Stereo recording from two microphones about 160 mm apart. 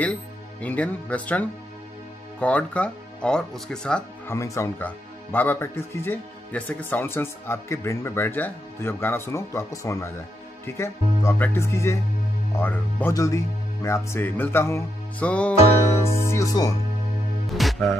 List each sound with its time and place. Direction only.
0.0 s speech: 10° left (ahead or behind)
4.3 s speech: 20° left (ahead or behind)
16.3 s speech: 20° left (ahead or behind)
17.5 s music: centre (ahead or behind)